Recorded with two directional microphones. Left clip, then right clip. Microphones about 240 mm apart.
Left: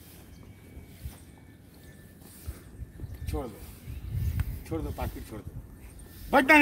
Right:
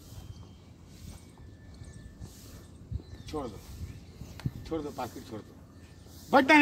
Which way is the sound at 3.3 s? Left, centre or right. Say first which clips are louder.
Even; centre.